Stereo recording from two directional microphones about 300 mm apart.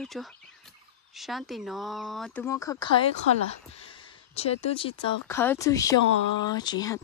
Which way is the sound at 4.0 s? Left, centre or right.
Centre.